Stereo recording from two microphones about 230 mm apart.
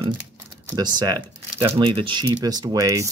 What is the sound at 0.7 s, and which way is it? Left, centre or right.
Speech, centre.